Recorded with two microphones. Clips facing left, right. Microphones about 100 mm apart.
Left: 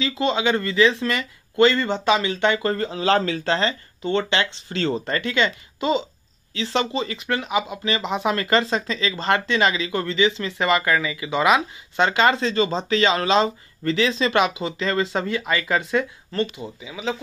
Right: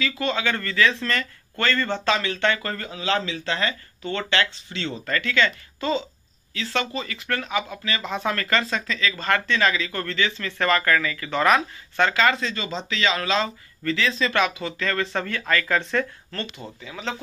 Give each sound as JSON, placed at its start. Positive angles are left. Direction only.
{"t": 0.0, "sound": "speech", "side_deg": 25}
{"t": 2.7, "sound": "speech", "side_deg": 35}
{"t": 4.0, "sound": "speech", "side_deg": 20}
{"t": 4.6, "sound": "speech", "side_deg": 40}
{"t": 5.0, "sound": "speech", "side_deg": 20}